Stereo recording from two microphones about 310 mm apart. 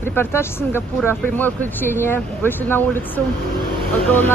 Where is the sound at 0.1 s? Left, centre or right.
Centre.